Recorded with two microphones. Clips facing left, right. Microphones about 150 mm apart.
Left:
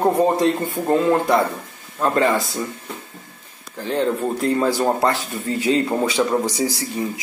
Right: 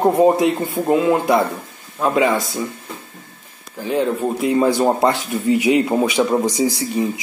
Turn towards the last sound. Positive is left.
turn(degrees=-20)  # may be behind; listen again after turning